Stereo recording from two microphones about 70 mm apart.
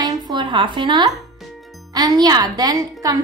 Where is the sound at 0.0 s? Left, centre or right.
Right.